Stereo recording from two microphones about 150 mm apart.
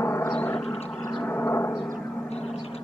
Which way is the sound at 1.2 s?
15° left (ahead or behind).